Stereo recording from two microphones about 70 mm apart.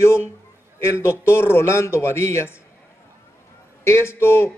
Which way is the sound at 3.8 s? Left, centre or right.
Left.